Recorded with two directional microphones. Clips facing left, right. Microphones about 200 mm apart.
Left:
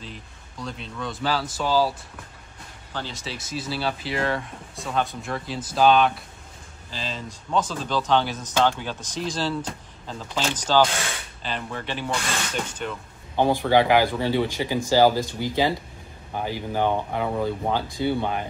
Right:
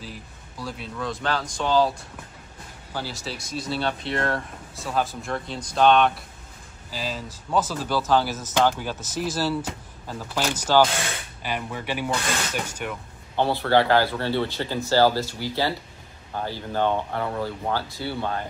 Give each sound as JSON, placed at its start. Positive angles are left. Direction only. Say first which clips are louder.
{"t": 0.0, "sound": "speech", "louder": "right 1 dB", "side_deg": -5}
{"t": 2.9, "sound": "speech", "louder": "right 1 dB", "side_deg": -5}
{"t": 13.4, "sound": "speech", "louder": "left 1 dB", "side_deg": 15}